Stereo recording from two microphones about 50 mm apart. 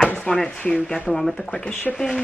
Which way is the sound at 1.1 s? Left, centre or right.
Centre.